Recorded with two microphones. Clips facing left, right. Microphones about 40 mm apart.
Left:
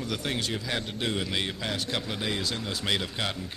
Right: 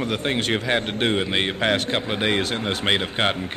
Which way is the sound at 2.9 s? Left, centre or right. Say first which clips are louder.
Right 8 dB; right.